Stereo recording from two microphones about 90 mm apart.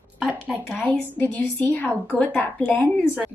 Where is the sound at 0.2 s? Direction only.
10° right (ahead or behind).